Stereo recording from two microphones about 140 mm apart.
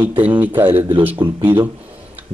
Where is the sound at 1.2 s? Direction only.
35° right (ahead or behind).